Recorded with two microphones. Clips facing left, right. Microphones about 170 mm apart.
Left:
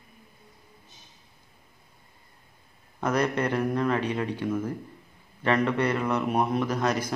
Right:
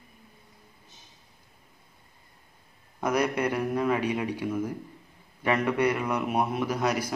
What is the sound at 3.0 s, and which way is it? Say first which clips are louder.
A man's voice: even; 10° right (ahead or behind).